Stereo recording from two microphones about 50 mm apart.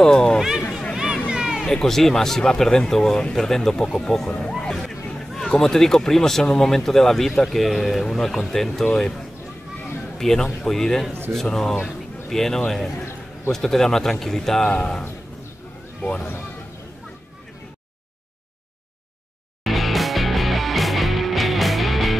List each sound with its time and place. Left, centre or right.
0.0 s speech: centre
0.9 s vehicle: centre
1.7 s speech: centre
10.1 s speech: centre
19.6 s music: centre